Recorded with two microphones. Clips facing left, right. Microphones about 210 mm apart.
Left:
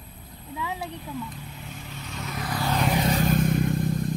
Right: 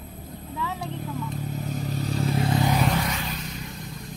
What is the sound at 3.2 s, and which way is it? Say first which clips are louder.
Vehicle: left 11 dB; 50° left (ahead or behind).